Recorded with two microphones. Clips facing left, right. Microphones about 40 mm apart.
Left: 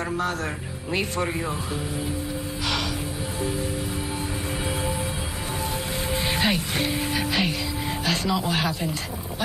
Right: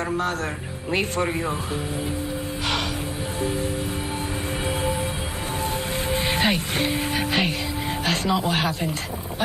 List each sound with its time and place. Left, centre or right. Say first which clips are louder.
6.1 s music: right 1 dB; right
8.0 s speech: right 2 dB; right